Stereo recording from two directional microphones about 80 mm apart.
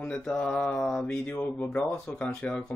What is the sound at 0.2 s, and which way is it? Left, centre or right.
Speech, centre.